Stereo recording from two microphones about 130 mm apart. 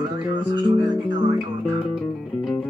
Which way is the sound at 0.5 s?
35° right (ahead or behind).